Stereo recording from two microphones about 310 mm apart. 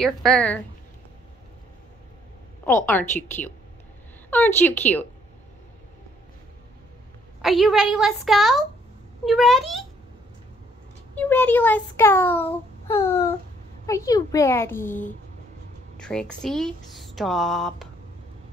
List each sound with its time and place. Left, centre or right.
0.0 s speech: centre
2.6 s speech: centre
7.4 s speech: centre
11.1 s a child's voice: centre
14.9 s speech: left
16.0 s speech: centre